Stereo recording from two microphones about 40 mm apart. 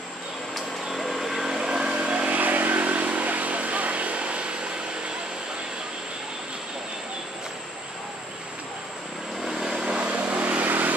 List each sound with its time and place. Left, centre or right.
0.6 s vehicle: centre; by 4.6 s right
9.5 s vehicle: centre
9.8 s vehicle: right